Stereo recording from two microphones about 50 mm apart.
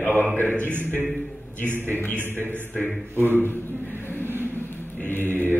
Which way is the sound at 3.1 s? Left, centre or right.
Left.